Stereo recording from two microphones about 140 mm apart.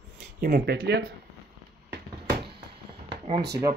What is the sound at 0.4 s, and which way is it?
Speech, 90° right.